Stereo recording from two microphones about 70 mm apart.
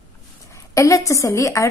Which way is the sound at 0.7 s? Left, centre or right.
Left.